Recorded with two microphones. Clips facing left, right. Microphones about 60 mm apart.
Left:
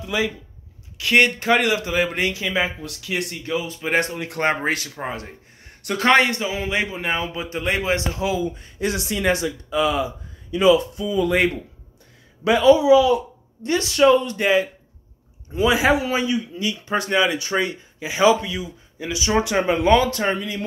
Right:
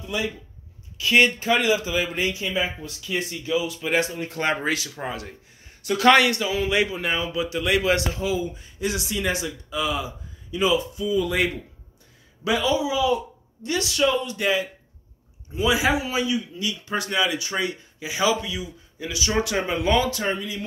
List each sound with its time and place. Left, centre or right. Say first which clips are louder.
0.9 s speech: left 1 dB; left
3.4 s a man's voice: right 3 dB; left
4.0 s speech: left 1 dB; left
4.4 s speech: left 3 dB; left
5.0 s a man's voice: left 2 dB; left
8.1 s speech: left 3 dB; left
13.6 s speech: left 5 dB; left
14.4 s a man's voice: left 5 dB; left
15.5 s a man's voice: left 4 dB; left
19.6 s speech: left 7 dB; left